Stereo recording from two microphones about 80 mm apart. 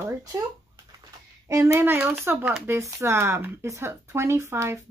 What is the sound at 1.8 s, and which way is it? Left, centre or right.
Speech, right.